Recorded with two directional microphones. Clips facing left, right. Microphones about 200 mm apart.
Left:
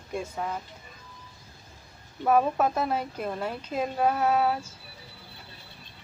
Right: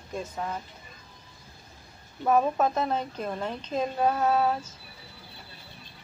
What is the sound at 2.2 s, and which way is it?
A woman's voice, 10° left (ahead or behind).